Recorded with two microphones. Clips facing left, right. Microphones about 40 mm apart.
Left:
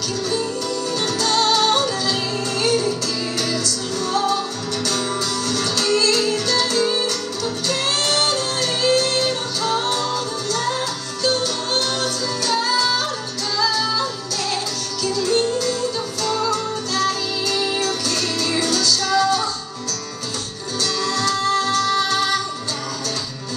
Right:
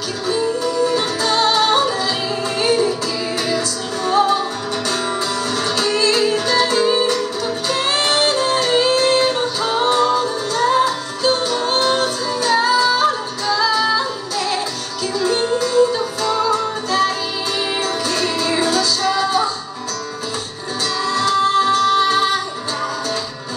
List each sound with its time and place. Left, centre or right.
0.7 s music: centre
5.5 s music: right
15.1 s music: right
21.0 s music: right